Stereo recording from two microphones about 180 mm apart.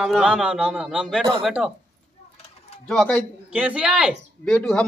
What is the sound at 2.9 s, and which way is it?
Speech, 5° left (ahead or behind).